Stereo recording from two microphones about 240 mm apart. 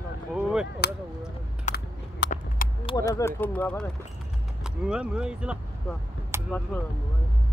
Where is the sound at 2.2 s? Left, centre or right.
Left.